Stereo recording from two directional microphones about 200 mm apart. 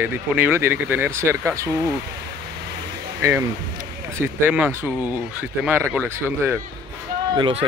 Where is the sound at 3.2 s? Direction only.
15° right (ahead or behind).